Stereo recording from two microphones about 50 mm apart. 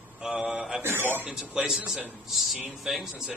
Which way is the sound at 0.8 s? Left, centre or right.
Right.